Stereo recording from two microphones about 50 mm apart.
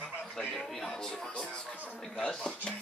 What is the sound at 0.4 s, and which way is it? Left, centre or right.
Speech, centre.